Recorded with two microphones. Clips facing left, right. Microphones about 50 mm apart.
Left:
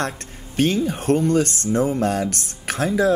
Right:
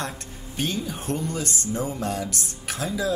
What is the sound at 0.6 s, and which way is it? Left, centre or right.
Speech, left.